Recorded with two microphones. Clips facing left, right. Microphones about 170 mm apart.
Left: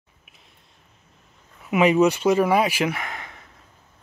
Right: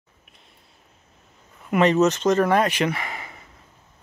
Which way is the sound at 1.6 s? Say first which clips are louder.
Left 1 dB; 5° left (ahead or behind).